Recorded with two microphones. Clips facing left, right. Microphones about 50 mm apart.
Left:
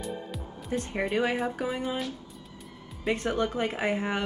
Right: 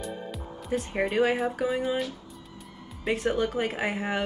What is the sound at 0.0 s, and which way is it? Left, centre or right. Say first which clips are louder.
Music: even; centre.